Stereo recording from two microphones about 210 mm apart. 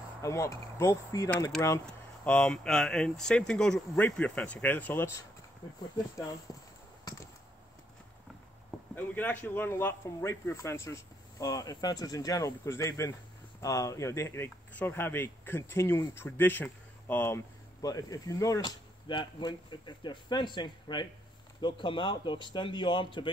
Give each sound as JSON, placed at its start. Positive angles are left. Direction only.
{"t": 0.2, "sound": "speech", "side_deg": 15}
{"t": 8.9, "sound": "speech", "side_deg": 10}